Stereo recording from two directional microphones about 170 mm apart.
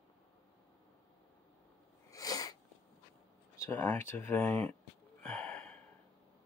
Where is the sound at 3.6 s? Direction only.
10° left (ahead or behind).